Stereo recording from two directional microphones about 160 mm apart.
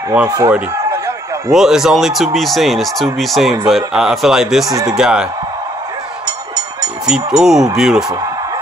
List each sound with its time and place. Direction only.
0.1 s speech: 10° right (ahead or behind)
0.7 s a sound: 20° right (ahead or behind)
1.5 s speech: centre (ahead or behind)
4.6 s speech: 20° right (ahead or behind)
4.9 s speech: 5° right (ahead or behind)
7.1 s speech: 5° right (ahead or behind)